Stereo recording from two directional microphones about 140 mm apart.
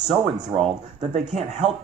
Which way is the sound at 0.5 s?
45° right (ahead or behind).